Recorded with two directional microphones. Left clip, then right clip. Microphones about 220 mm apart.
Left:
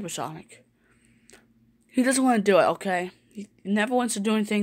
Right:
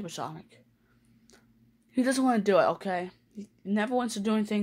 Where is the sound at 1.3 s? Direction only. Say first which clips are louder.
Left 6 dB; 20° left (ahead or behind).